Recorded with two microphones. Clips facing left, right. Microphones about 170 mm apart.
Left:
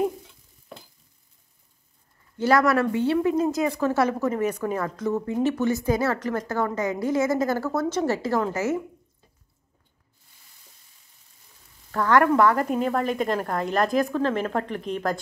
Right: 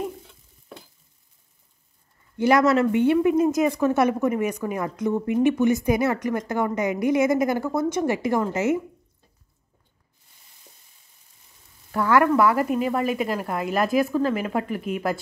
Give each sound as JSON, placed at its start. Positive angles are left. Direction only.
{"t": 2.3, "sound": "a woman's voice", "side_deg": -15}
{"t": 11.9, "sound": "a woman's voice", "side_deg": -10}